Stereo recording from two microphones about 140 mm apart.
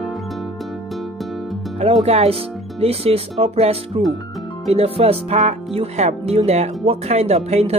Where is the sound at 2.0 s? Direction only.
45° right (ahead or behind).